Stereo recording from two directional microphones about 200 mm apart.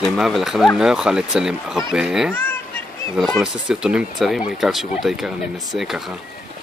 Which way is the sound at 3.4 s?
5° right (ahead or behind).